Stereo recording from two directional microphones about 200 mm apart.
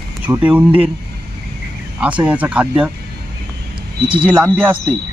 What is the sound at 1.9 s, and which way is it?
Speech, 5° right (ahead or behind).